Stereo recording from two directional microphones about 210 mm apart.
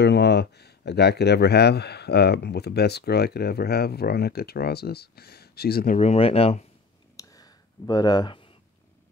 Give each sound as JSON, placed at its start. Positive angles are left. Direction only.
{"t": 0.0, "sound": "speech", "side_deg": 55}
{"t": 5.9, "sound": "speech", "side_deg": 30}
{"t": 7.2, "sound": "a sound", "side_deg": 15}